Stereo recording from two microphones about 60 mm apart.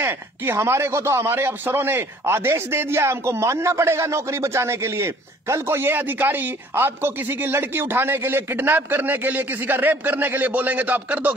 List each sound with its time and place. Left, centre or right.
0.0 s speech: right
1.3 s a man's voice: right